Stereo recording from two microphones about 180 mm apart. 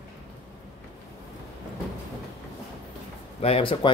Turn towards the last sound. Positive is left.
turn(degrees=30)  # may be behind; listen again after turning